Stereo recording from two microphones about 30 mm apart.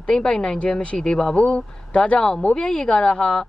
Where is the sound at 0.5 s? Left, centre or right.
Left.